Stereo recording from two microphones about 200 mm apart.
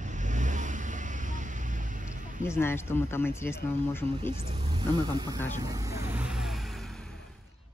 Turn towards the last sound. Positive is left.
turn(degrees=0)  # may be behind; listen again after turning